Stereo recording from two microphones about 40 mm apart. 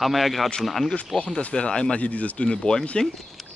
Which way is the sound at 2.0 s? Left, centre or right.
Left.